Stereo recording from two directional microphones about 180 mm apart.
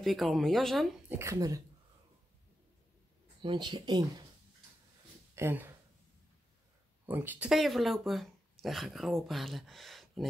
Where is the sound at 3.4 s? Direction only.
25° right (ahead or behind).